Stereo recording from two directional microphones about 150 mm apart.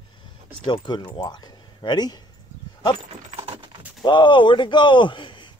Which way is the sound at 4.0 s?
30° left (ahead or behind).